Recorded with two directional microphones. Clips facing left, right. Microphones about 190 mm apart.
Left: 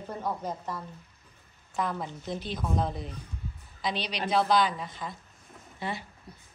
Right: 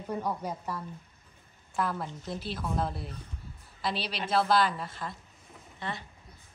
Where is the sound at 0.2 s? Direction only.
10° right (ahead or behind).